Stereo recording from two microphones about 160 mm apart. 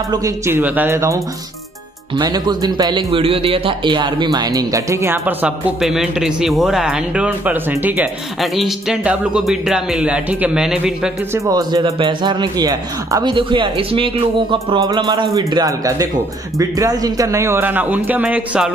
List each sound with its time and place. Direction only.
0.1 s a man's voice: 20° right (ahead or behind)
8.4 s speech: centre (ahead or behind)
11.4 s a man's voice: 25° right (ahead or behind); by 18.7 s 10° right (ahead or behind)